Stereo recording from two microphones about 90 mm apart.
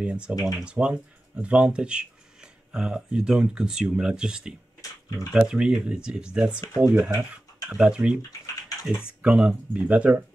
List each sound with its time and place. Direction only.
0.0 s speech: 10° right (ahead or behind)
9.2 s speech: 10° right (ahead or behind)